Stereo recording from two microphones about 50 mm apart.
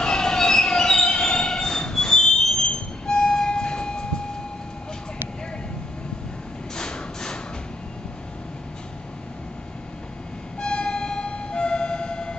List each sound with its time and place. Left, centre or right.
0.0 s train: centre
6.7 s a sound: centre
10.6 s siren: centre